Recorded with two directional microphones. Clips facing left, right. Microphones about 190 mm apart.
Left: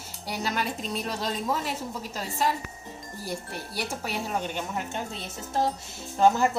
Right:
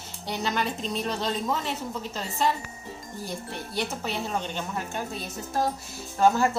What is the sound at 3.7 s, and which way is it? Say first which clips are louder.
A woman's voice: right 2 dB; 10° left (ahead or behind).